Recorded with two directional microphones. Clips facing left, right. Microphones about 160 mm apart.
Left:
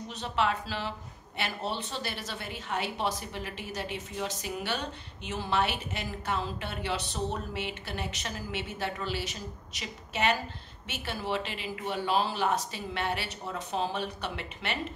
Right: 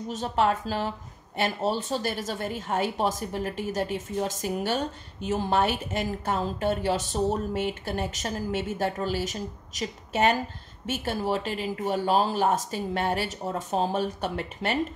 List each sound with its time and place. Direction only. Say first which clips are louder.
0.1 s speech: right 5 dB; 45° right (ahead or behind)